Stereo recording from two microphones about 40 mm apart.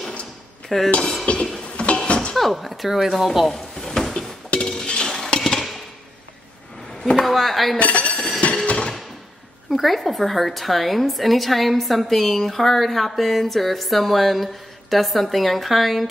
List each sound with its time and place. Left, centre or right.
0.7 s a woman's voice: centre
1.2 s a sound: left
2.3 s speech: centre
4.5 s dishes: centre
5.4 s a sound: centre
7.2 s a woman's voice: centre
7.7 s speech: left
8.6 s a sound: left
9.7 s a woman's voice: centre